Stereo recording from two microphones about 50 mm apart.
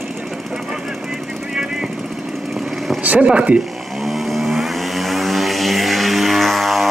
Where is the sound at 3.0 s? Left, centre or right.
Right.